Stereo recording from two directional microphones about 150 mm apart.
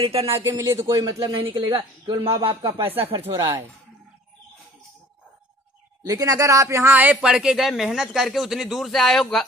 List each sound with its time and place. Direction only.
0.0 s speech: 40° right (ahead or behind)
0.4 s speech: 20° right (ahead or behind)
2.9 s speech: 40° right (ahead or behind)
3.3 s speech: 20° right (ahead or behind)
6.0 s speech: 25° right (ahead or behind); by 9.5 s centre (ahead or behind)